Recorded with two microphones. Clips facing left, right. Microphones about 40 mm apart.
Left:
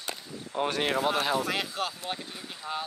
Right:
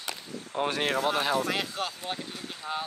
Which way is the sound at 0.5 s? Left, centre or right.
Centre.